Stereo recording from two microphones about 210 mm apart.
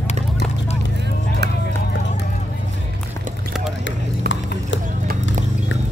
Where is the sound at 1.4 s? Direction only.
50° right (ahead or behind).